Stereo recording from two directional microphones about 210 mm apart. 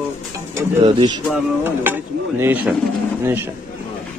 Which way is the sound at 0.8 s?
25° right (ahead or behind).